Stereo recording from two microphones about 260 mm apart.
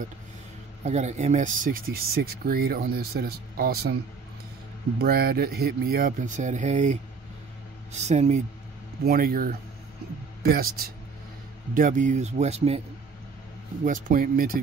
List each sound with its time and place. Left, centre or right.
0.8 s speech: right
4.9 s speech: right
8.0 s a man's voice: right
13.8 s speech: right